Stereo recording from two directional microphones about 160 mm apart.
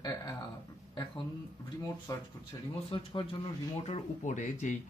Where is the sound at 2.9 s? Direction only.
30° left (ahead or behind); by 4.8 s 50° left (ahead or behind).